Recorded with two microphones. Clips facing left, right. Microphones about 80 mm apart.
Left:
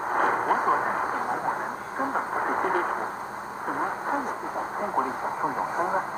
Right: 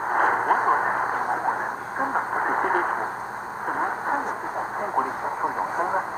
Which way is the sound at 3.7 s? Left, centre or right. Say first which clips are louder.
Right 3 dB; right.